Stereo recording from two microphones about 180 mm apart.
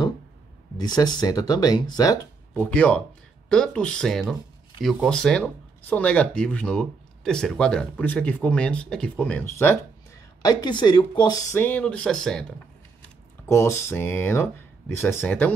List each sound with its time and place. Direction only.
0.7 s speech: 20° left (ahead or behind)
11.5 s speech: 10° left (ahead or behind)
13.5 s speech: 15° left (ahead or behind)